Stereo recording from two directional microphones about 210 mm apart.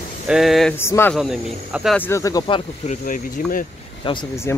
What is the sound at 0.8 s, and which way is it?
Speech, 10° left (ahead or behind).